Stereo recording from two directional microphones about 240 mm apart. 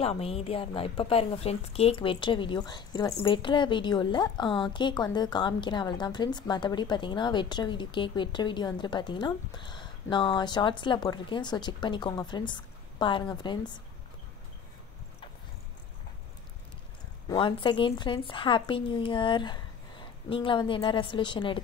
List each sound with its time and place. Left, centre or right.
0.0 s a woman's voice: left
17.3 s a woman's voice: centre